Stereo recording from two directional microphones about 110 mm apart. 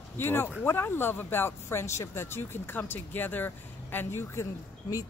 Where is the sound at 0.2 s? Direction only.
20° left (ahead or behind).